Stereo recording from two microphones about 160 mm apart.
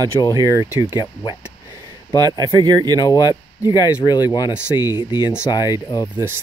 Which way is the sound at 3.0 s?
25° left (ahead or behind).